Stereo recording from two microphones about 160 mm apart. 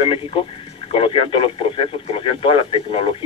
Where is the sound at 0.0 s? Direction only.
35° left (ahead or behind).